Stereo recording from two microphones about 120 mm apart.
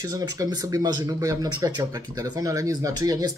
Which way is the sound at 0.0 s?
30° right (ahead or behind).